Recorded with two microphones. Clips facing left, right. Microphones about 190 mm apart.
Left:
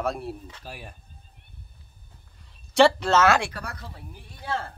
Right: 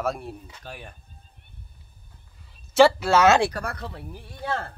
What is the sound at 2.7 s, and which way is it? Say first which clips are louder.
Speech: right 2 dB; 5° right (ahead or behind).